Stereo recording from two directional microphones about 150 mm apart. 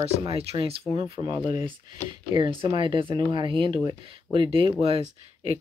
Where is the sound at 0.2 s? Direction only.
40° right (ahead or behind).